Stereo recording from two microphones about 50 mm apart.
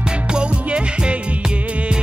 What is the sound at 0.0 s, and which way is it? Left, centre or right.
Music, centre.